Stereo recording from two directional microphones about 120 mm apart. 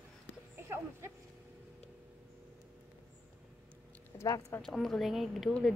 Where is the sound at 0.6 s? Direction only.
20° right (ahead or behind).